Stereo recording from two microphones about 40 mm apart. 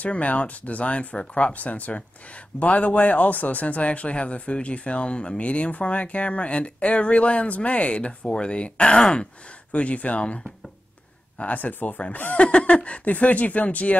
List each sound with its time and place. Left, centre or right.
0.0 s speech: left
5.4 s speech: left
12.4 s speech: left